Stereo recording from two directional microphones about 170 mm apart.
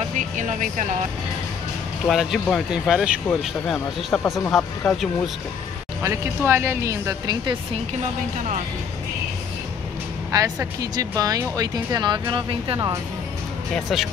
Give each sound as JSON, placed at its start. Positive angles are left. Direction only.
{"t": 0.2, "sound": "speech", "side_deg": -45}
{"t": 2.0, "sound": "speech", "side_deg": 0}
{"t": 3.3, "sound": "speech", "side_deg": 5}
{"t": 6.0, "sound": "speech", "side_deg": -15}
{"t": 10.3, "sound": "speech", "side_deg": -20}
{"t": 13.7, "sound": "speech", "side_deg": 0}